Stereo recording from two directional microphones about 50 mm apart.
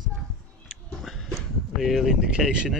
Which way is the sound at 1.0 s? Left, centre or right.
Centre.